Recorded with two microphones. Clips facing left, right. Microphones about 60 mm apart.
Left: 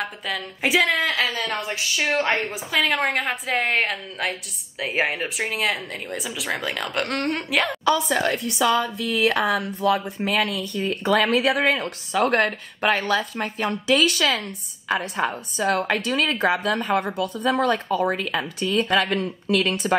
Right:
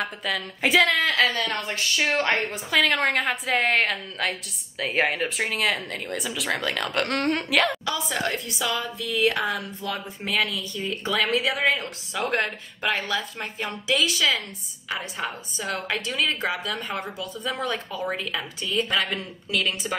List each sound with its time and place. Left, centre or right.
0.0 s a woman's voice: centre
7.8 s speech: left